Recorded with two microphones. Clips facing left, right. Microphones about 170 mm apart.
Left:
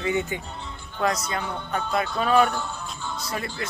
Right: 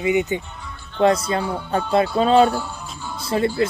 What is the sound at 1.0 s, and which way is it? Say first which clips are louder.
Speech: right 8 dB; 30° right (ahead or behind).